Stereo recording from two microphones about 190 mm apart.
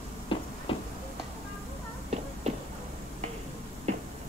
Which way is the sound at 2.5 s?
35° right (ahead or behind).